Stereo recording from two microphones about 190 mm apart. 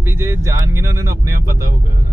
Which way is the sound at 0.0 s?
15° right (ahead or behind).